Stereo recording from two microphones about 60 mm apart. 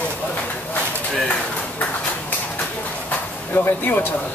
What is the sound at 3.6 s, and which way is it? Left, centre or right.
Speech, left.